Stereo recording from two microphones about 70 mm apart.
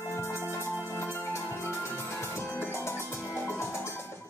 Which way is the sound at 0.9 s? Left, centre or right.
Left.